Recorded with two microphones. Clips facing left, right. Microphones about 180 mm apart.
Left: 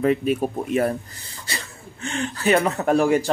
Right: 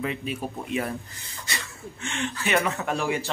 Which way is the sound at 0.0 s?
45° left (ahead or behind).